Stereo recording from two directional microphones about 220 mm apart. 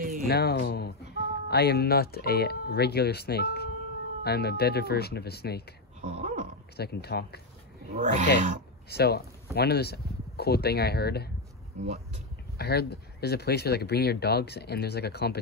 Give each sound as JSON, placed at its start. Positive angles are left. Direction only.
{"t": 0.3, "sound": "speech", "side_deg": 45}
{"t": 5.9, "sound": "a sound", "side_deg": -30}
{"t": 6.8, "sound": "speech", "side_deg": 45}
{"t": 7.9, "sound": "speech", "side_deg": -35}
{"t": 8.8, "sound": "speech", "side_deg": 45}
{"t": 11.7, "sound": "speech", "side_deg": -30}
{"t": 12.5, "sound": "speech", "side_deg": 45}